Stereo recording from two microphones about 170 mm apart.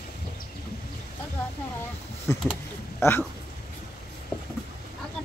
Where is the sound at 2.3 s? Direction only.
15° left (ahead or behind).